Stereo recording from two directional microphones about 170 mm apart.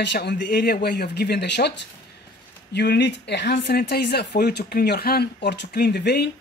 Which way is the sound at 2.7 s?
80° left.